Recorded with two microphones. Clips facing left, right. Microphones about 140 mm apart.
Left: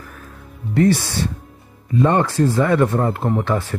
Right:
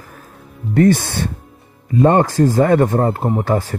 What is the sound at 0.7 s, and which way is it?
Speech, 50° right (ahead or behind).